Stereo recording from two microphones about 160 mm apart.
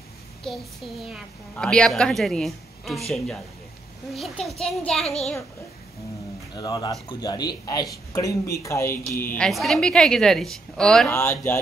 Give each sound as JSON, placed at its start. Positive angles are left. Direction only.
{"t": 0.5, "sound": "a woman's voice", "side_deg": 5}
{"t": 4.1, "sound": "a woman's voice", "side_deg": 0}
{"t": 6.5, "sound": "a man's voice", "side_deg": 25}
{"t": 9.5, "sound": "a woman's voice", "side_deg": 0}
{"t": 11.1, "sound": "speech", "side_deg": 15}